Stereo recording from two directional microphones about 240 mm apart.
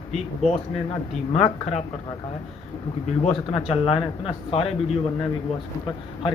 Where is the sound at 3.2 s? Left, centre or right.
Left.